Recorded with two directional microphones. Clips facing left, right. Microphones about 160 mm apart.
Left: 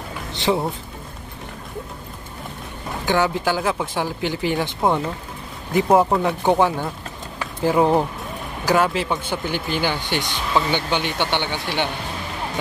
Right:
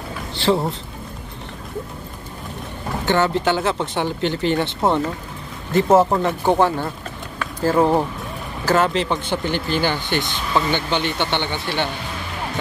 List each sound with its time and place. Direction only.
0.3 s vehicle: 20° left (ahead or behind)
3.1 s speech: 10° left (ahead or behind)
5.9 s speech: centre (ahead or behind)
6.2 s speech: 15° left (ahead or behind)
7.3 s pigeon: 15° left (ahead or behind)
8.6 s speech: 10° left (ahead or behind)